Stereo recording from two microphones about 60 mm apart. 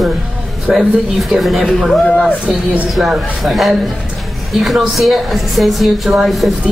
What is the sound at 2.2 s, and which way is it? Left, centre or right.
Speech, right.